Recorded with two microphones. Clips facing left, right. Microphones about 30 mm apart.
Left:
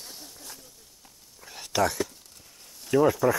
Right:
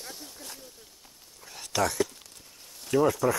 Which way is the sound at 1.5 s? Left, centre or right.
Centre.